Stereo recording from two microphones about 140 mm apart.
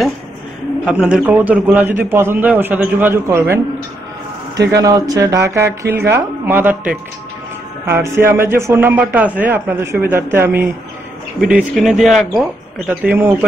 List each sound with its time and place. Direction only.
0.8 s a man's voice: 5° right (ahead or behind)
4.6 s a man's voice: 25° right (ahead or behind)
11.4 s speech: 5° right (ahead or behind)
13.0 s a man's voice: 10° right (ahead or behind)